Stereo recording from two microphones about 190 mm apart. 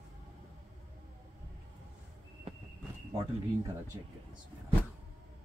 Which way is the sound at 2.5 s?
30° right (ahead or behind).